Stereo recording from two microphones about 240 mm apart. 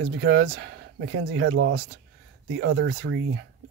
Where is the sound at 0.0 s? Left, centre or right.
Right.